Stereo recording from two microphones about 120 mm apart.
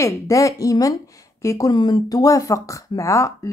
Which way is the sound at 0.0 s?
25° left (ahead or behind).